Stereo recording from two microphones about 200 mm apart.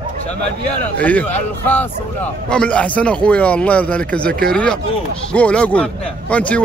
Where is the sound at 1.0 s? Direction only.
5° left (ahead or behind).